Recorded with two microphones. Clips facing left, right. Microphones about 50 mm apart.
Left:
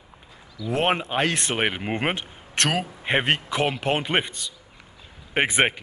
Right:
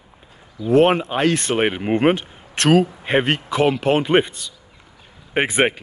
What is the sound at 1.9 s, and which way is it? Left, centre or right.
Speech, centre.